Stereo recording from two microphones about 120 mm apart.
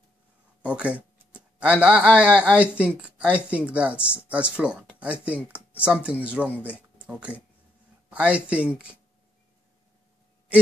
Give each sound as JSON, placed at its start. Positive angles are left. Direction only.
{"t": 0.6, "sound": "speech", "side_deg": -10}
{"t": 6.6, "sound": "a sound", "side_deg": 15}
{"t": 7.1, "sound": "speech", "side_deg": -10}